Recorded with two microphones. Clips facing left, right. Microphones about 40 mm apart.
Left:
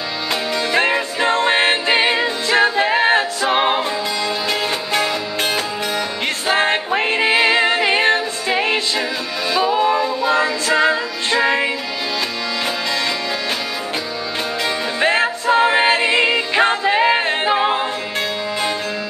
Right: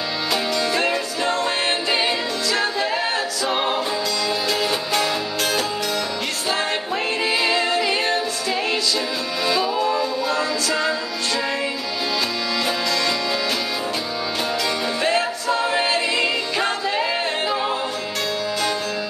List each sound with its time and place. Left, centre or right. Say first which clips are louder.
0.7 s music: left 4 dB; left
4.5 s music: left 1 dB; left
6.5 s music: left 7 dB; left
9.5 s music: left 5 dB; left
15.0 s music: left 7 dB; left